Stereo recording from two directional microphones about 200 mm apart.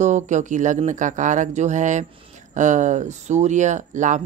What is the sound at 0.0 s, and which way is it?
Speech, 35° right (ahead or behind).